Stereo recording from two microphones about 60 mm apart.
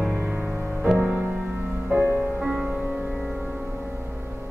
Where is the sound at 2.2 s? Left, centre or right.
Centre.